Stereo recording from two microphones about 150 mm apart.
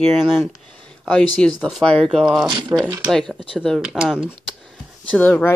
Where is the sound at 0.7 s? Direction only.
5° left (ahead or behind).